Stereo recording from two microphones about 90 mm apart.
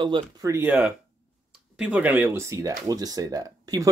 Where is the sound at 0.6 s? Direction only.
15° right (ahead or behind).